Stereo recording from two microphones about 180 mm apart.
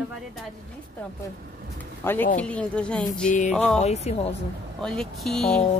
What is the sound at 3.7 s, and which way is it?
Speech, 35° left (ahead or behind).